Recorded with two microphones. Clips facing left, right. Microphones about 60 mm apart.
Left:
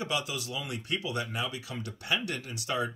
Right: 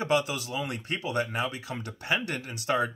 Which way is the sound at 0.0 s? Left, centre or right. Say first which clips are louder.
Right 6 dB; right.